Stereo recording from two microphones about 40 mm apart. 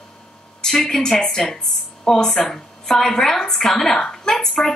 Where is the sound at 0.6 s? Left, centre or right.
Centre.